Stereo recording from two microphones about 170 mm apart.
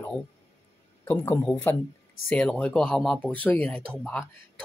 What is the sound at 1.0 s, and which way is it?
A man's voice, 15° left (ahead or behind).